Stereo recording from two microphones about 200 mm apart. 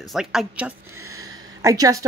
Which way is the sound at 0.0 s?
Centre (ahead or behind).